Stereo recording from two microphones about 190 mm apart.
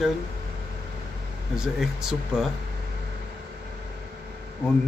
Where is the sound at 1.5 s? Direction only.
5° right (ahead or behind).